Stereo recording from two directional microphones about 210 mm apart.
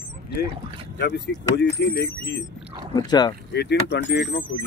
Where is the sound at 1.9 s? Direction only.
55° left (ahead or behind).